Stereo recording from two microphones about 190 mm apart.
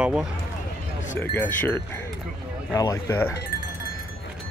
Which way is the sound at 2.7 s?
15° left (ahead or behind).